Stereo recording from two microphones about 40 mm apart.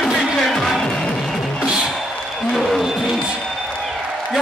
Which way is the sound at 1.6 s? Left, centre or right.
Centre.